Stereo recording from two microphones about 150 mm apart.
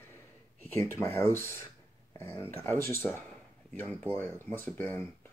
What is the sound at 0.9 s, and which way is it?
Speech, 15° left (ahead or behind).